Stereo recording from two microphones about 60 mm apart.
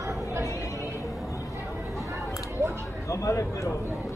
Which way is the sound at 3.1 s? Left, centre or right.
Left.